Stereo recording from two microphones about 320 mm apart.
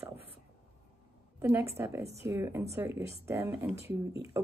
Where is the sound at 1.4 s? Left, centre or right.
Centre.